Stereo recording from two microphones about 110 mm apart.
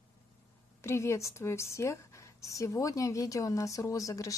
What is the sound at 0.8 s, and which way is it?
Speech, 25° left (ahead or behind).